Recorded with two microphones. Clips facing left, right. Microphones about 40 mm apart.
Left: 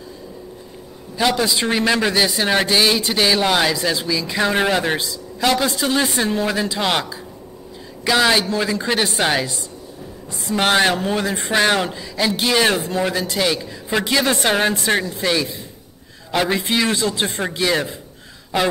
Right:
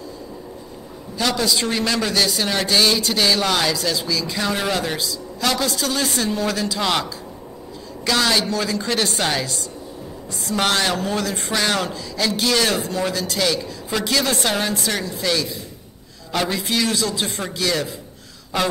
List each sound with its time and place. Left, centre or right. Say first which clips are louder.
1.1 s a man's voice: left 2 dB; centre
16.4 s a man's voice: left 2 dB; left